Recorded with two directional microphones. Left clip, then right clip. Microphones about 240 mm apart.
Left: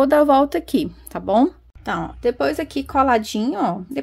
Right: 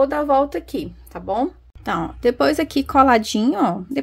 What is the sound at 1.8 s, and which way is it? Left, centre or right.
Speech, centre.